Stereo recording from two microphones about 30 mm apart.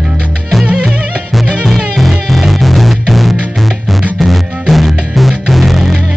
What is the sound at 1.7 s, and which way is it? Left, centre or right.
Music, centre.